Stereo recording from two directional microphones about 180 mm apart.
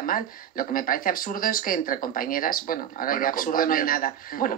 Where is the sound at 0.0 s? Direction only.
50° left (ahead or behind).